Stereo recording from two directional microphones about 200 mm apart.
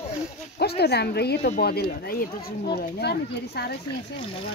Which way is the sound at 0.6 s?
55° left (ahead or behind).